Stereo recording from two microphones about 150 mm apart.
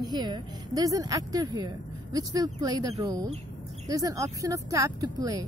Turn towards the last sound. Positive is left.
turn(degrees=-25)  # may be behind; listen again after turning